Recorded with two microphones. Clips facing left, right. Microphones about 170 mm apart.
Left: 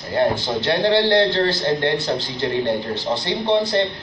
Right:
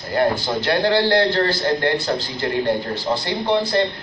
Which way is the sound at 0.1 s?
25° left (ahead or behind).